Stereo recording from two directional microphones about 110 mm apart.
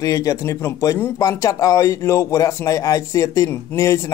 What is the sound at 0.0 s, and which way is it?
Speech, 30° left (ahead or behind).